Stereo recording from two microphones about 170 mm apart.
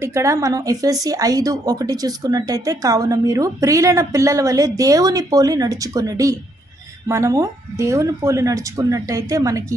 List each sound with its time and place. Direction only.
0.0 s speech: 20° right (ahead or behind)